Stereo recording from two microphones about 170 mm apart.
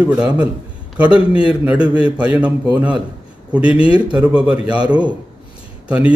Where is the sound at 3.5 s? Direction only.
5° right (ahead or behind).